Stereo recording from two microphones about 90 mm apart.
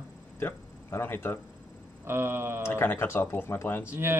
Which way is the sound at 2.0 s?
30° right (ahead or behind).